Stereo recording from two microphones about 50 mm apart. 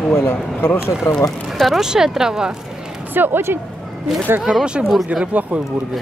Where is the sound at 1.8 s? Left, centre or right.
Centre.